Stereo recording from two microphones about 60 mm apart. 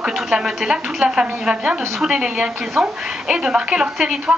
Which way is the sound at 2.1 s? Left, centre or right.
Centre.